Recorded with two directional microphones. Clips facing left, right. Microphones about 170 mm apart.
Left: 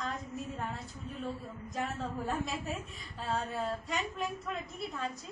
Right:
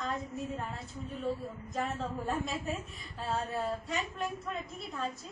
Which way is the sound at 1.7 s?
Centre (ahead or behind).